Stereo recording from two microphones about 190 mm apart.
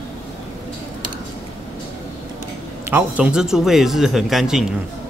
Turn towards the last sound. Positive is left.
turn(degrees=0)  # may be behind; listen again after turning